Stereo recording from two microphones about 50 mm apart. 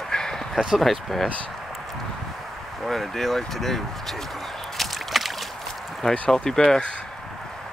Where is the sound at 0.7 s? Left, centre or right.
Centre.